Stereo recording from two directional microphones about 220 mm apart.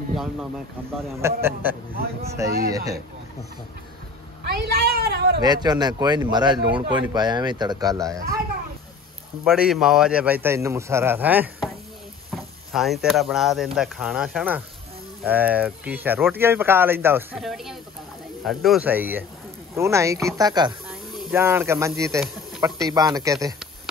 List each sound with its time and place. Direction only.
0.1 s speech: centre (ahead or behind)
4.5 s a woman's voice: 45° right (ahead or behind)
5.4 s speech: 20° right (ahead or behind)
9.4 s speech: 5° right (ahead or behind)